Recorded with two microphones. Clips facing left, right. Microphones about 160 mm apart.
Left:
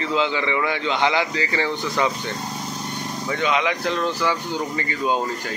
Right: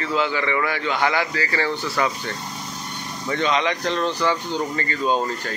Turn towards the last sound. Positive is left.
turn(degrees=15)  # may be behind; listen again after turning